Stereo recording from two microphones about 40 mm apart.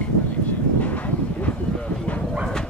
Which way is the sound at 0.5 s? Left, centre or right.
Left.